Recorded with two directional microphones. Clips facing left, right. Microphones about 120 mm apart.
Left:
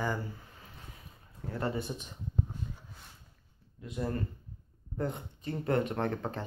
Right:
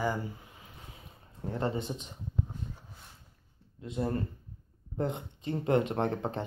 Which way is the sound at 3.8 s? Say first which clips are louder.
Right 3 dB; 30° right (ahead or behind).